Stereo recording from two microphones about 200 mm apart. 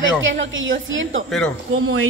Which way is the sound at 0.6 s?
75° right (ahead or behind).